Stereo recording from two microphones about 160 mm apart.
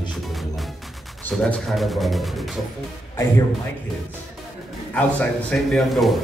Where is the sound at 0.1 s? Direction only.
Centre (ahead or behind).